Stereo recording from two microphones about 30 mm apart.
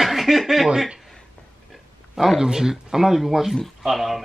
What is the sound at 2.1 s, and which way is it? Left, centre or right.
Speech, centre.